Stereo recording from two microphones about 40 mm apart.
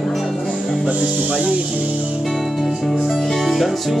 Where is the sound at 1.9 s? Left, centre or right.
Right.